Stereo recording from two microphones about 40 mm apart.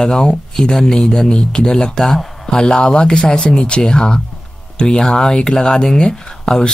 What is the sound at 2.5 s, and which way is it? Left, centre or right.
Speech, centre.